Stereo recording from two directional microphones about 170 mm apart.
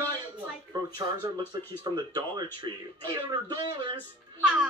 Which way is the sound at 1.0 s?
20° right (ahead or behind).